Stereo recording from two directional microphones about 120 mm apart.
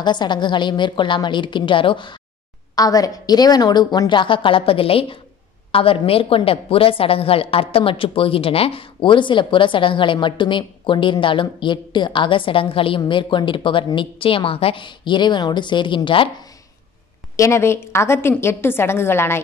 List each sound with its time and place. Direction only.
0.0 s a woman's voice: 40° left (ahead or behind)
2.7 s a woman's voice: 30° left (ahead or behind)
17.4 s a woman's voice: 20° left (ahead or behind)